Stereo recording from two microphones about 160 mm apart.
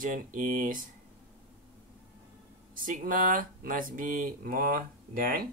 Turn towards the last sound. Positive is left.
turn(degrees=-60)  # may be behind; listen again after turning